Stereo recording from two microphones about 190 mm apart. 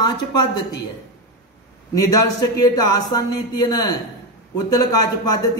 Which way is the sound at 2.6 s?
20° left (ahead or behind).